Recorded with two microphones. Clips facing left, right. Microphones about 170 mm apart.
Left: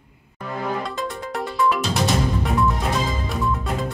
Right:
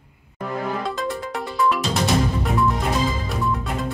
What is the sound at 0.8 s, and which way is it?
Music, centre (ahead or behind).